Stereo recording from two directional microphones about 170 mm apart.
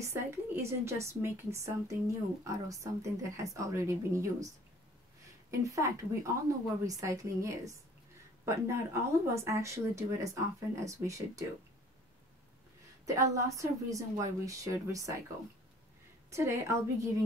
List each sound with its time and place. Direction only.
0.0 s a woman's voice: 15° right (ahead or behind)
5.5 s a woman's voice: 20° right (ahead or behind)
13.0 s a woman's voice: 20° right (ahead or behind)
16.3 s a woman's voice: 15° right (ahead or behind)